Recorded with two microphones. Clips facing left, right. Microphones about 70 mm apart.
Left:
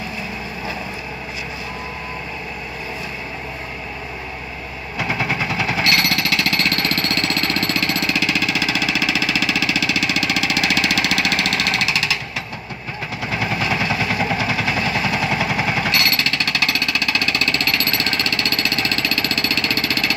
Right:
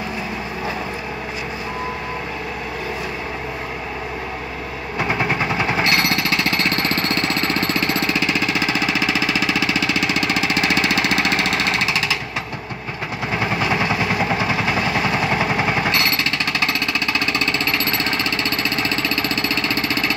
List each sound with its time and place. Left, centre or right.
4.9 s jackhammer: right
13.3 s vehicle: right
15.2 s jackhammer: right